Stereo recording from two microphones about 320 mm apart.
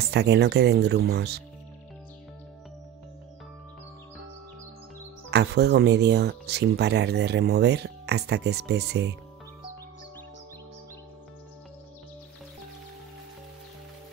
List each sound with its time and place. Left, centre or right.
0.0 s speech: right
5.3 s speech: right